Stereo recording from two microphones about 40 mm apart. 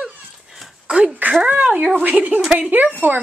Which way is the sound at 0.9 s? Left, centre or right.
Right.